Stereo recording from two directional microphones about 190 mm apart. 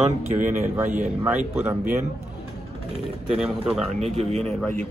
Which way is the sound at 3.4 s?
5° right (ahead or behind).